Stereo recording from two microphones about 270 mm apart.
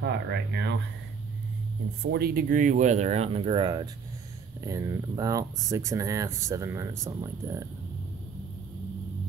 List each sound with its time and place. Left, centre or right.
0.0 s speech: right
2.0 s speech: right; by 7.6 s centre